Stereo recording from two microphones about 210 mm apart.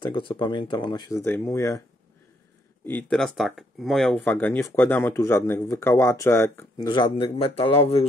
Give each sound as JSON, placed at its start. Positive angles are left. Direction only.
{"t": 0.0, "sound": "speech", "side_deg": 25}
{"t": 2.8, "sound": "speech", "side_deg": 10}